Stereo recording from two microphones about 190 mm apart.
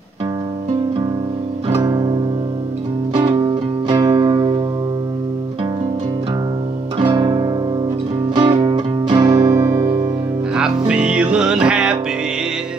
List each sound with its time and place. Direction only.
1.7 s music: 20° right (ahead or behind)
3.2 s music: 30° right (ahead or behind)
7.0 s music: 25° right (ahead or behind)
10.9 s music: 5° right (ahead or behind)